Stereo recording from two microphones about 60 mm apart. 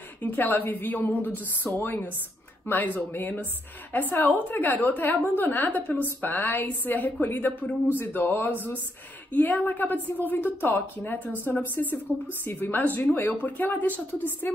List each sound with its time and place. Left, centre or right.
0.3 s a woman's voice: left